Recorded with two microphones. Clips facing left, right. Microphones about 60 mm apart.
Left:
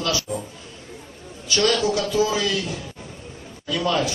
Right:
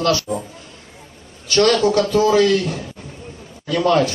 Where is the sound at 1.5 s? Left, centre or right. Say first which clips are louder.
Right 6 dB; right.